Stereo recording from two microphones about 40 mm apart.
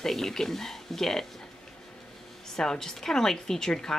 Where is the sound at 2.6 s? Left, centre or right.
Centre.